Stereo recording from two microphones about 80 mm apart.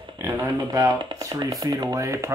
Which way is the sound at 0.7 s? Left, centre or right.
Right.